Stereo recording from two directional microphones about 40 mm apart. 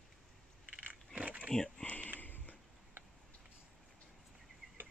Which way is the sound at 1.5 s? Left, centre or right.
Centre.